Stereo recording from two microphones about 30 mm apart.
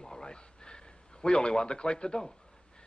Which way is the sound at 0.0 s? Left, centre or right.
Left.